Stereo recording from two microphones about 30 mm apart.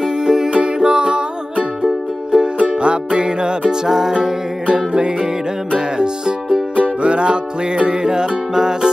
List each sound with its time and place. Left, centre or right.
0.0 s music: centre
2.3 s music: right; by 4.3 s centre
4.7 s music: right
7.0 s music: right